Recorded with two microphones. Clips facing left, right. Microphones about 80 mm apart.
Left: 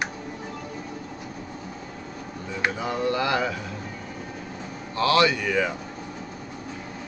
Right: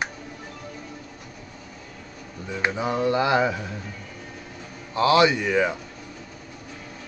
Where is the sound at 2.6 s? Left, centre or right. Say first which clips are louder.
Right 2 dB; right.